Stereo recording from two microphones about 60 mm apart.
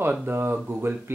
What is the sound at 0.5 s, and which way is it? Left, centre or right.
Speech, right.